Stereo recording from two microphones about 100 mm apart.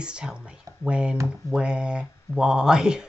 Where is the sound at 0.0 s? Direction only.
10° right (ahead or behind).